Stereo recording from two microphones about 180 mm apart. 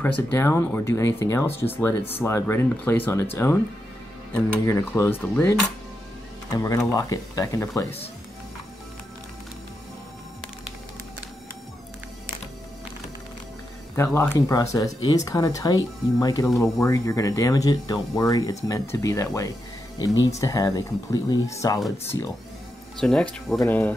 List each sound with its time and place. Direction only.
0.0 s speech: 15° left (ahead or behind)
4.3 s speech: 15° left (ahead or behind)
13.9 s speech: 15° left (ahead or behind)
22.9 s speech: 5° left (ahead or behind)